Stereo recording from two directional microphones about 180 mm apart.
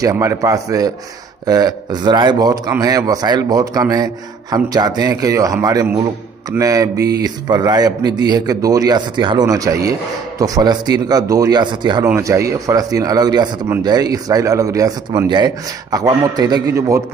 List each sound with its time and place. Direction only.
0.0 s a man's voice: 15° right (ahead or behind)